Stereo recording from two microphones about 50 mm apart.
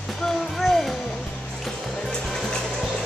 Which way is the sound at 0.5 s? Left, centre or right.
Centre.